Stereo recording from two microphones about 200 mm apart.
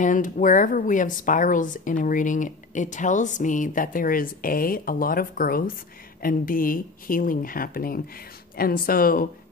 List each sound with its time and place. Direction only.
0.0 s speech: 40° left (ahead or behind)